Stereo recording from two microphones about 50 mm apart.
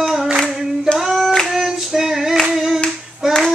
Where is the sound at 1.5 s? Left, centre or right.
Centre.